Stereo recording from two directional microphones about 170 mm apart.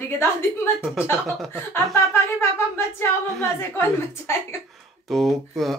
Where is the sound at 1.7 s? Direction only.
15° left (ahead or behind).